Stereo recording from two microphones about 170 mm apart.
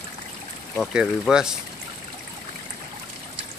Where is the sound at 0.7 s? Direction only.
Centre (ahead or behind).